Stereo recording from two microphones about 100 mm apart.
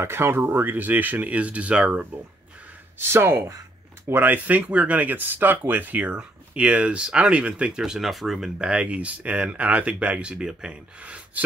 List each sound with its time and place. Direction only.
0.0 s speech: 25° right (ahead or behind)
3.0 s speech: 25° right (ahead or behind)